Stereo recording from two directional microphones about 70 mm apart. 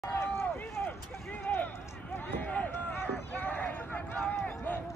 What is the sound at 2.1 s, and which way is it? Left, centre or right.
Run, left.